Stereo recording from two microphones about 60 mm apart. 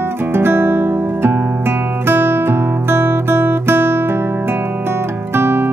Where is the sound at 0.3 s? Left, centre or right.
Right.